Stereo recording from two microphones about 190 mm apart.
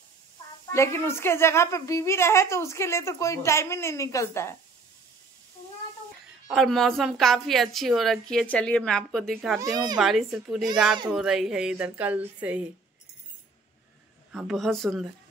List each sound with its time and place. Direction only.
0.7 s a woman's voice: 15° left (ahead or behind)
6.5 s a woman's voice: centre (ahead or behind)
9.6 s a child's voice: 20° right (ahead or behind)
9.9 s a woman's voice: centre (ahead or behind)
14.3 s a woman's voice: centre (ahead or behind)